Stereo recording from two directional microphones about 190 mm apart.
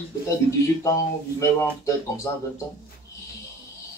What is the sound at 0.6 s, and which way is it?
Speech, 15° left (ahead or behind).